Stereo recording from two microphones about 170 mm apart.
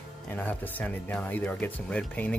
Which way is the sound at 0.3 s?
10° left (ahead or behind).